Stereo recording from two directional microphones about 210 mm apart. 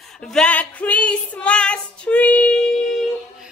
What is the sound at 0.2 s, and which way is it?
Female singing, 5° left (ahead or behind).